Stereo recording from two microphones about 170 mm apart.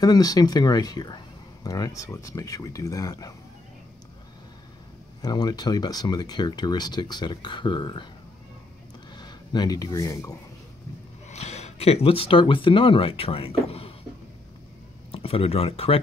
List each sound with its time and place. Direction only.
0.0 s speech: 20° left (ahead or behind)
5.2 s speech: 25° left (ahead or behind)
9.1 s speech: 25° left (ahead or behind)
11.2 s speech: 40° left (ahead or behind)
15.0 s speech: 35° left (ahead or behind)